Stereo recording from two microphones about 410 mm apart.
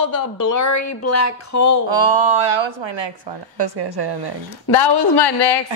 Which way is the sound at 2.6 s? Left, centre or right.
Right.